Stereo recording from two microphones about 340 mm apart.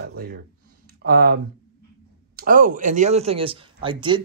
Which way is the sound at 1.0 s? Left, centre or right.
Right.